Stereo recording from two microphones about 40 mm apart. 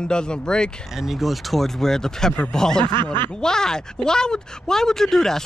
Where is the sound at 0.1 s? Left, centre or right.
Left.